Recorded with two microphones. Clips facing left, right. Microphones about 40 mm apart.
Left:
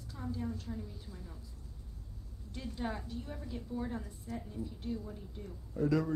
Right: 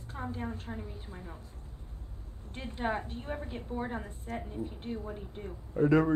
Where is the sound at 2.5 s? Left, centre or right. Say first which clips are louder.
Right 6 dB; right.